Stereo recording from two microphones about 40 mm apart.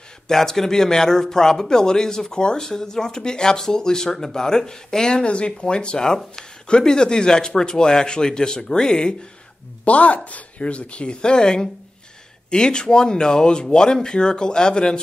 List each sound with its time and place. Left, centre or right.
0.3 s speech: centre
9.8 s speech: left